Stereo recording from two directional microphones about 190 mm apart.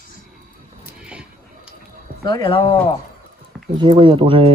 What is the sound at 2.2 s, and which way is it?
Speech, 25° left (ahead or behind).